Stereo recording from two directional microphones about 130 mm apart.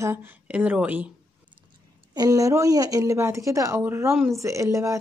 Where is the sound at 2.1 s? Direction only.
25° right (ahead or behind).